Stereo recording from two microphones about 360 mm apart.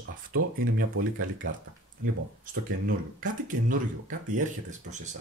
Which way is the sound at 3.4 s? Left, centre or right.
Right.